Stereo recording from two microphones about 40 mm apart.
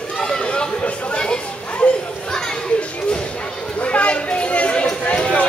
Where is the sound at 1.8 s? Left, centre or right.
Left.